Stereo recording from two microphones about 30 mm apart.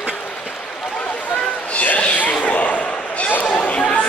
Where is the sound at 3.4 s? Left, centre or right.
Left.